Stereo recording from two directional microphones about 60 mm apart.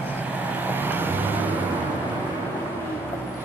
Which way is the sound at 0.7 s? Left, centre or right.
Right.